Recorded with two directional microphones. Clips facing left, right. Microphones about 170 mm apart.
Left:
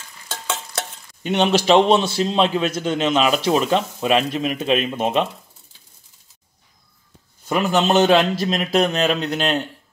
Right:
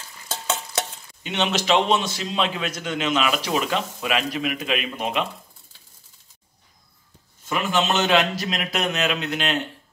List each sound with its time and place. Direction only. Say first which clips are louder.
1.2 s speech: left 6 dB; 45° left (ahead or behind)
1.5 s a man's voice: left 6 dB; 30° left (ahead or behind)
7.4 s a man's voice: left 5 dB; 40° left (ahead or behind)